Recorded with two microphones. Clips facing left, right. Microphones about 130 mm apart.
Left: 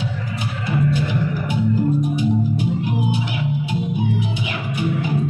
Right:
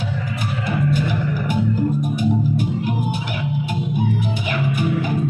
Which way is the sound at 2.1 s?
50° right (ahead or behind).